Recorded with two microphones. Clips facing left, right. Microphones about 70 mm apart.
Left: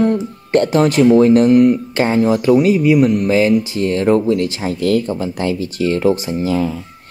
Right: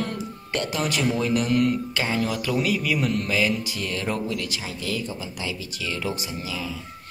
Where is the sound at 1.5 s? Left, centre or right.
Left.